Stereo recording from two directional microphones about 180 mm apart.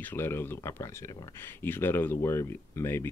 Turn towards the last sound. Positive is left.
turn(degrees=15)  # may be behind; listen again after turning